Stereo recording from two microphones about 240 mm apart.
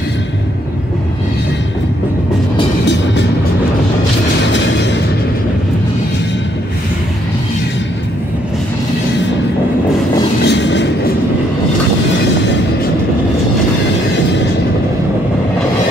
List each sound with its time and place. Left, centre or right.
10.4 s train: left